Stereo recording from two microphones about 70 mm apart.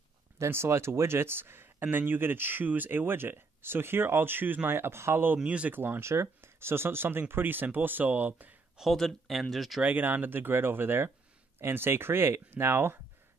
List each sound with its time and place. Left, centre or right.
0.4 s speech: right
5.4 s speech: centre
5.8 s speech: right
8.7 s speech: centre
9.8 s speech: right